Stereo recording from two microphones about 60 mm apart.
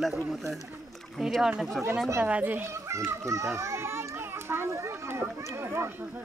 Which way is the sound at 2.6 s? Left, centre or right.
Right.